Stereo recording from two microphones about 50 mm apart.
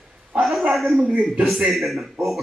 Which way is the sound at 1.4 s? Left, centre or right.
Centre.